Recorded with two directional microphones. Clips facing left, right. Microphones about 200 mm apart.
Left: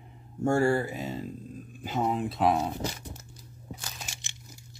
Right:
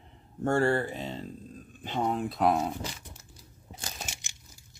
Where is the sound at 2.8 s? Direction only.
40° left (ahead or behind).